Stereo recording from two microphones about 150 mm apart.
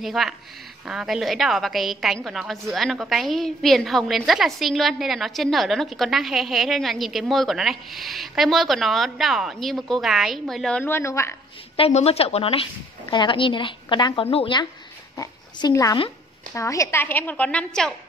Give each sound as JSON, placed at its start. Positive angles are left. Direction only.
{"t": 0.0, "sound": "a woman's voice", "side_deg": 0}
{"t": 11.7, "sound": "a woman's voice", "side_deg": 40}
{"t": 15.1, "sound": "a woman's voice", "side_deg": 20}